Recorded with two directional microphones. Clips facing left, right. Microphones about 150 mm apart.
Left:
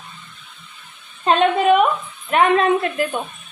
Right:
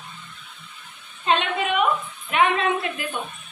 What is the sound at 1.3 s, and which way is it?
A woman's voice, 40° left (ahead or behind).